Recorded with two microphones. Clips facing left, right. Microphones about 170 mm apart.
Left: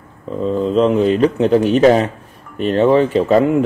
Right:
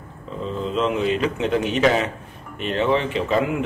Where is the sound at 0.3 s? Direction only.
45° left (ahead or behind).